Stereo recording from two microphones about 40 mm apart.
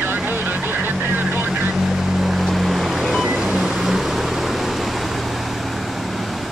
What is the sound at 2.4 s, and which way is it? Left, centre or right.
Music, centre.